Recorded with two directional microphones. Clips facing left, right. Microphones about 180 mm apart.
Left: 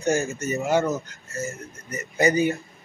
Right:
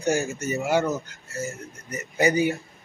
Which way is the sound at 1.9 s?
15° right (ahead or behind).